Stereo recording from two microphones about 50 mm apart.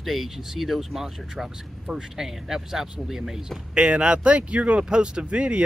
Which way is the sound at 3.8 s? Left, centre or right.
Right.